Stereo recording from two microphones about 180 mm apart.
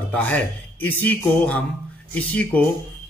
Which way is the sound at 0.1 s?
10° left (ahead or behind).